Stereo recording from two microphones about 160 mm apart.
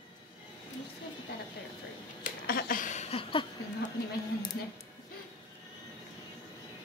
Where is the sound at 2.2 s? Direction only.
60° left (ahead or behind).